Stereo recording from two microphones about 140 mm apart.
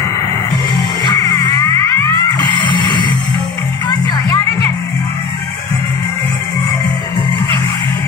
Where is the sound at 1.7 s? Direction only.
35° right (ahead or behind).